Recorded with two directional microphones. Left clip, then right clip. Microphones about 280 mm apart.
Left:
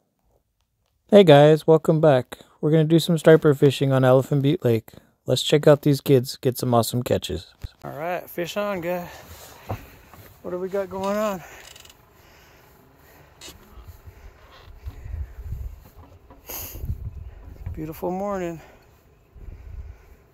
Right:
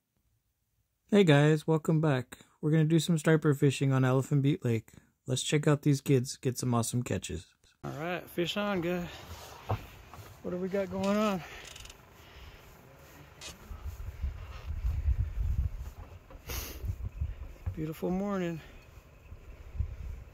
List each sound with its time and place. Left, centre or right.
1.1 s speech: centre
7.8 s speech: centre
9.3 s a sound: left
10.8 s speech: centre
16.4 s a sound: centre
17.7 s speech: centre